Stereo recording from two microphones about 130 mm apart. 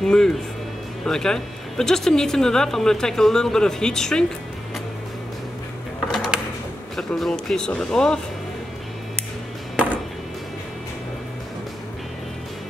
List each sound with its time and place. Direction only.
0.0 s speech: 5° left (ahead or behind)
6.1 s a sound: 5° right (ahead or behind)
7.0 s speech: 5° left (ahead or behind)